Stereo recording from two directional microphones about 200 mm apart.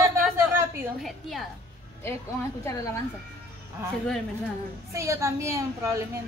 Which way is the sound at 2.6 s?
15° left (ahead or behind).